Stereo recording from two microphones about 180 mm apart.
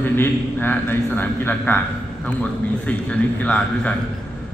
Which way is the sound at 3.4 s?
5° left (ahead or behind).